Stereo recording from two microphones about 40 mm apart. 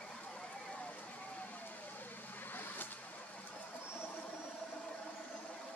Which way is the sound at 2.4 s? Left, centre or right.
Left.